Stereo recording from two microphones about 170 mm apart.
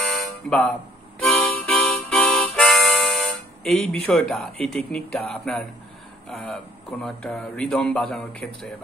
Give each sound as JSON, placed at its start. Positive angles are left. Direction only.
{"t": 0.0, "sound": "music", "side_deg": 5}
{"t": 1.2, "sound": "harmonica", "side_deg": 0}
{"t": 6.2, "sound": "speech", "side_deg": 5}